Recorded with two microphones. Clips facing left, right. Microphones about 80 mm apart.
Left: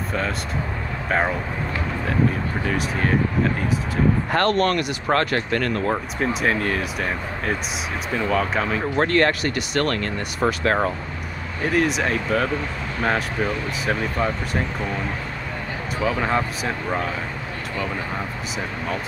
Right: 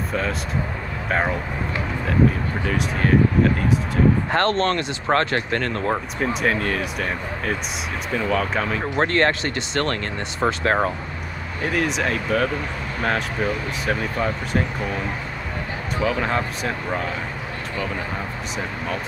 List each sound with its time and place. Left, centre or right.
2.6 s speech: centre
4.3 s speech: right
6.4 s speech: centre
8.9 s speech: right
11.7 s speech: centre
16.0 s speech: centre